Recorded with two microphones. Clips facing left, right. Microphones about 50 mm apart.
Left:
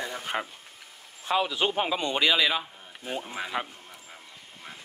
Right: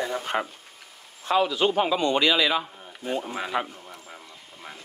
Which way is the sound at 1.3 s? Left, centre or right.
Centre.